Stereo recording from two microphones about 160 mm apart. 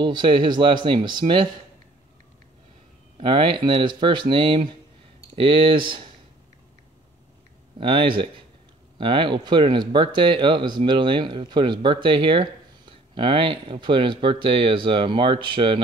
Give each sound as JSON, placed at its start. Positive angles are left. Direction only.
{"t": 0.0, "sound": "speech", "side_deg": -30}
{"t": 3.2, "sound": "speech", "side_deg": -35}
{"t": 7.8, "sound": "speech", "side_deg": -30}